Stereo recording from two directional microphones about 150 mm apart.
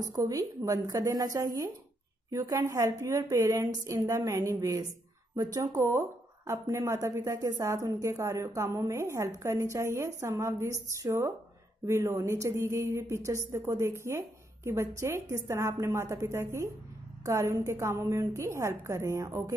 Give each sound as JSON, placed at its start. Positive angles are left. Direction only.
{"t": 0.1, "sound": "speech", "side_deg": -20}